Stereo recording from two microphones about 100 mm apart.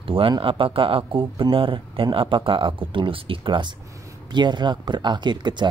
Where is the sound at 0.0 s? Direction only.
60° right (ahead or behind).